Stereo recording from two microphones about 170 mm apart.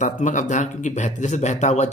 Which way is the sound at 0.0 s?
45° left (ahead or behind).